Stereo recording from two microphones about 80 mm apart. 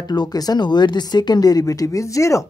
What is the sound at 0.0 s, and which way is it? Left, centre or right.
Speech, left.